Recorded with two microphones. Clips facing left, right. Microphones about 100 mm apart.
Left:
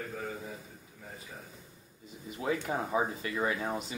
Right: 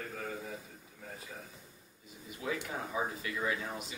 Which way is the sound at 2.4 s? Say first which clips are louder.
Left 5 dB; 40° left (ahead or behind).